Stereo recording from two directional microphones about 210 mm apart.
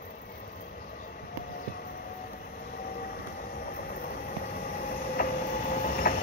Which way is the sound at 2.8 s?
45° left (ahead or behind).